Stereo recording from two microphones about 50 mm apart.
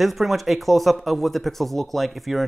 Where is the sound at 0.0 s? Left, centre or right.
Centre.